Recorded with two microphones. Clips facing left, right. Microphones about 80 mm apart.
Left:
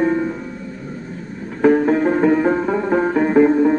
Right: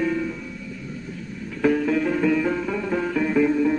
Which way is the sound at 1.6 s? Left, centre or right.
Left.